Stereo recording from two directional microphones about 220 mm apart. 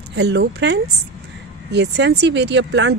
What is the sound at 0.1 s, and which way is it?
Speech, 50° right (ahead or behind).